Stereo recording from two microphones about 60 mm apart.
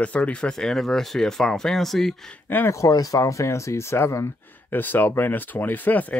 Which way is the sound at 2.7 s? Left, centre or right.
Left.